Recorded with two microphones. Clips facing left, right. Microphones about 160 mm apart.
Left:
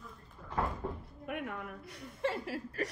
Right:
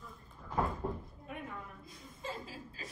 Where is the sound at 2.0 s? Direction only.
75° left (ahead or behind).